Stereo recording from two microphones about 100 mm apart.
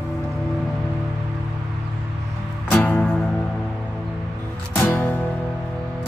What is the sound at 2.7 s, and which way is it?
Music, 15° left (ahead or behind).